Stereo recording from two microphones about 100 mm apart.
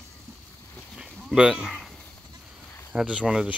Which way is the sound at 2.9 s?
10° right (ahead or behind).